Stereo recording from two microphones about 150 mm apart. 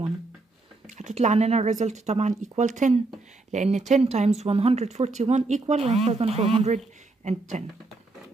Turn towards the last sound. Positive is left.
turn(degrees=-50)  # may be behind; listen again after turning